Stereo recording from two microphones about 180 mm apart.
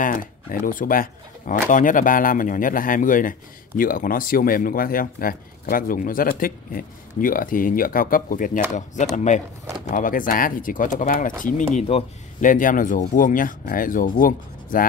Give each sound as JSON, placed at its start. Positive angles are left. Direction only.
{"t": 0.0, "sound": "speech", "side_deg": 50}